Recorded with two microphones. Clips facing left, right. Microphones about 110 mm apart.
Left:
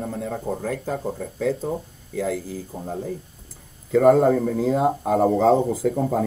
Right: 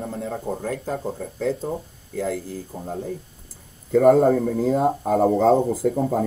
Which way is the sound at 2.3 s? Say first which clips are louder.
Left 1 dB; 55° right (ahead or behind).